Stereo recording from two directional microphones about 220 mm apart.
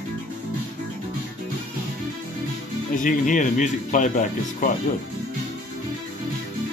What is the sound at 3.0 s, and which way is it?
Speech, 35° left (ahead or behind).